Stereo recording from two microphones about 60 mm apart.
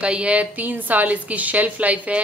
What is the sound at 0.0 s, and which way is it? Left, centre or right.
A woman's voice, centre.